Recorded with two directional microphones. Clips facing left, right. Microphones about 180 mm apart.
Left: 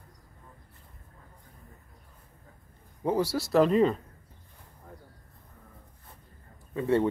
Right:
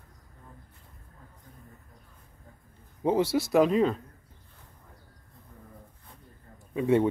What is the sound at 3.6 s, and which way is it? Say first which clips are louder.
Speech: left 1 dB; centre (ahead or behind).